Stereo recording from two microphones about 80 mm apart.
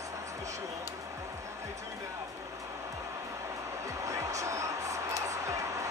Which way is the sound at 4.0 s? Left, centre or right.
Right.